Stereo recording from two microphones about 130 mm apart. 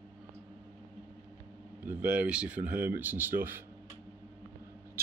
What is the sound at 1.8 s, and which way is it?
Speech, 15° right (ahead or behind).